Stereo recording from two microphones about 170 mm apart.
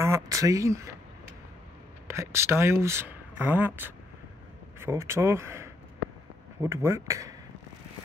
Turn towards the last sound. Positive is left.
turn(degrees=-20)  # may be behind; listen again after turning